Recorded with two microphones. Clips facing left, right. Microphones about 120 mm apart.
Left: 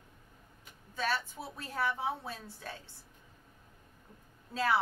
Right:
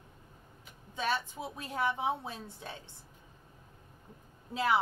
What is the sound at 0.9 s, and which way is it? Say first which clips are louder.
A woman's voice: right 1 dB; 20° right (ahead or behind).